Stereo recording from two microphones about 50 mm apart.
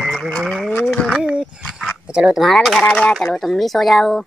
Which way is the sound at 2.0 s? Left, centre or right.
Right.